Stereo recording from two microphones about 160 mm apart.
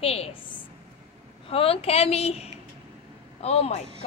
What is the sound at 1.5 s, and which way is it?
Speech, 35° left (ahead or behind).